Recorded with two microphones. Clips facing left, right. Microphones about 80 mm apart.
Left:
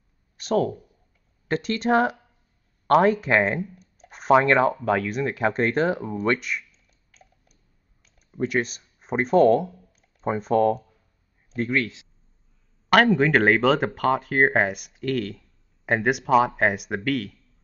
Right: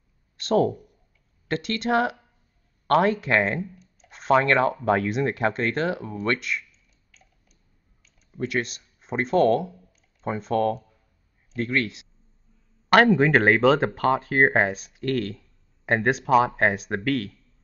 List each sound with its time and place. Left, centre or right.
0.6 s speech: centre
1.5 s speech: left
4.7 s speech: centre
5.4 s speech: centre
8.3 s speech: centre
12.9 s speech: centre